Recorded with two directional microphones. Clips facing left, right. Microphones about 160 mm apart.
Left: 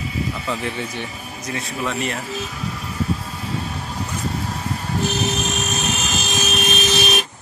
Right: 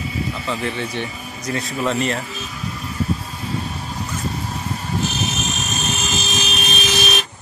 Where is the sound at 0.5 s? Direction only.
10° left (ahead or behind).